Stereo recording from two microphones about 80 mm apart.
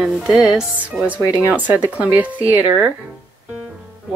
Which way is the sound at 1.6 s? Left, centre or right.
Centre.